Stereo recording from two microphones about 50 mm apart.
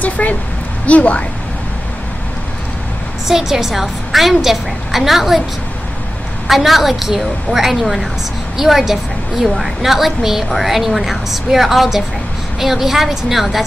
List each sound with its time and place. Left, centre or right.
0.0 s a woman's voice: left
3.3 s a woman's voice: centre
6.4 s a woman's voice: centre